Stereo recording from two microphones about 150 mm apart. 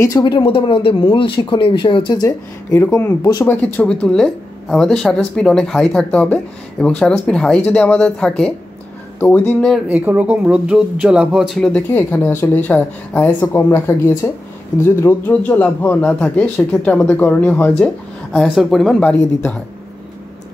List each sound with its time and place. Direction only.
0.0 s speech: 25° left (ahead or behind)
2.2 s speech: 15° left (ahead or behind)
9.8 s speech: 10° right (ahead or behind); by 19.6 s 10° left (ahead or behind)